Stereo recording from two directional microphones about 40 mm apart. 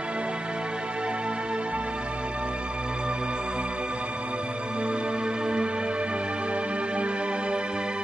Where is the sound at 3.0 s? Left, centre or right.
Right.